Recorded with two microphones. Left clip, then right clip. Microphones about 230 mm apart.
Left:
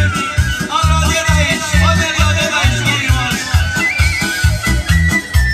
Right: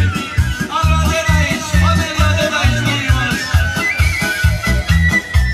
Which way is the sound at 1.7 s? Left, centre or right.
Left.